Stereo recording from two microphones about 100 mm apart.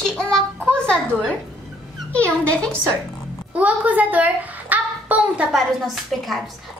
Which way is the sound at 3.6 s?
15° right (ahead or behind).